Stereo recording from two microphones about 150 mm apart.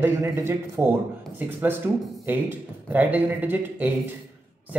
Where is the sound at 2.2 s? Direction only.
15° right (ahead or behind).